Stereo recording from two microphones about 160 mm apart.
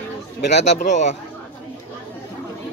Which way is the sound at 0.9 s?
50° left (ahead or behind).